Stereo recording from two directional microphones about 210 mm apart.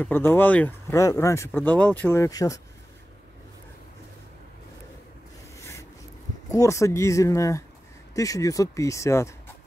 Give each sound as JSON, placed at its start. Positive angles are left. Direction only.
{"t": 0.0, "sound": "speech", "side_deg": 10}
{"t": 5.6, "sound": "a sound", "side_deg": 15}
{"t": 6.5, "sound": "speech", "side_deg": 15}